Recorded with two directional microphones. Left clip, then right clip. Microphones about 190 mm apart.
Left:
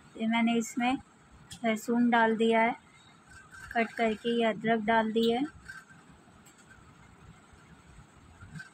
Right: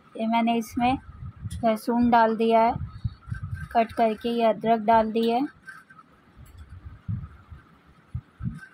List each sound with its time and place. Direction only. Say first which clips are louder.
0.2 s speech: right 5 dB; 15° right (ahead or behind)
2.0 s speech: right 5 dB; 15° right (ahead or behind)
3.7 s speech: right 7 dB; 15° right (ahead or behind)